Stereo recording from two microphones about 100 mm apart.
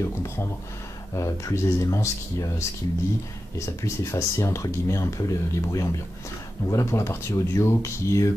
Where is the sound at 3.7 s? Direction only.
30° left (ahead or behind).